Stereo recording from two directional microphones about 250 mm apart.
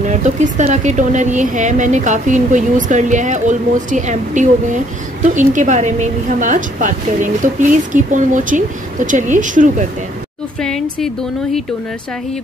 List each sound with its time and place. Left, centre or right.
0.1 s a woman's voice: right
10.6 s speech: centre